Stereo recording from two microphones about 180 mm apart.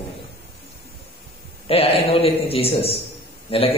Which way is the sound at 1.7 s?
35° left (ahead or behind).